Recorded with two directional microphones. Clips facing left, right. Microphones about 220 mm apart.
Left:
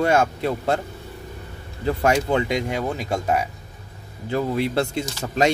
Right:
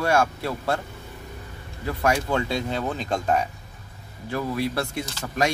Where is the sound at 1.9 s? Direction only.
25° left (ahead or behind); by 3.4 s 10° left (ahead or behind).